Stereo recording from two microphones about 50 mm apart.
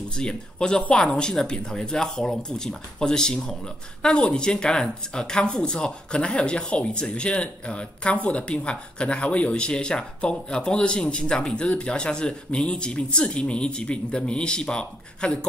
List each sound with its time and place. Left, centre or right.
0.1 s speech: centre